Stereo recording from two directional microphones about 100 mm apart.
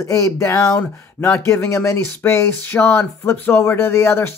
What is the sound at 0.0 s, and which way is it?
Speech, 30° left (ahead or behind).